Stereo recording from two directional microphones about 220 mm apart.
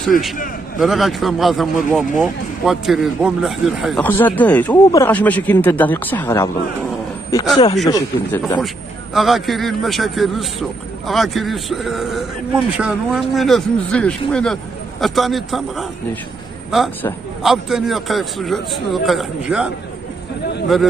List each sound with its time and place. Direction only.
0.7 s speech: centre (ahead or behind)
7.9 s speech: 15° left (ahead or behind)
9.1 s speech: centre (ahead or behind)